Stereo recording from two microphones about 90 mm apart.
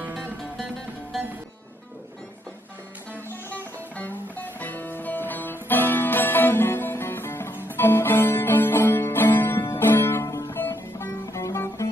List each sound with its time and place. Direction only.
3.4 s music: 20° left (ahead or behind)